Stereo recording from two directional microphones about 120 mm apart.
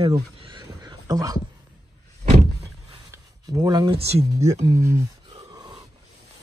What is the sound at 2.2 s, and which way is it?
Vehicle, 65° right (ahead or behind).